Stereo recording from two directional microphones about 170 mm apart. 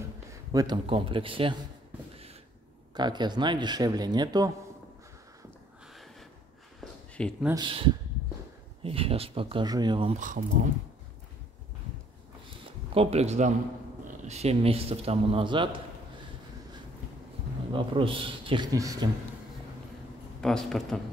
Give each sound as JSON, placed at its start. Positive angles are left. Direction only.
{"t": 0.5, "sound": "a man's voice", "side_deg": -25}
{"t": 2.9, "sound": "speech", "side_deg": -25}
{"t": 6.8, "sound": "a sound", "side_deg": 5}
{"t": 7.5, "sound": "speech", "side_deg": -30}
{"t": 8.8, "sound": "a man's voice", "side_deg": -35}
{"t": 10.1, "sound": "speech", "side_deg": -50}
{"t": 12.9, "sound": "a man's voice", "side_deg": -35}
{"t": 17.7, "sound": "speech", "side_deg": -30}
{"t": 20.3, "sound": "speech", "side_deg": 5}